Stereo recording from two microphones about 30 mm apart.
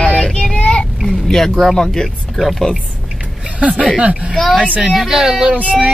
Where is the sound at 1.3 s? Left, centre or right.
Centre.